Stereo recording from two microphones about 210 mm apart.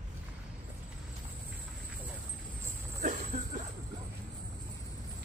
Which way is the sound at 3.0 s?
35° right (ahead or behind).